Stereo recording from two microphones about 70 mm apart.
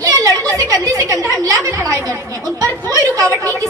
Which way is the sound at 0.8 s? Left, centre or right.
Right.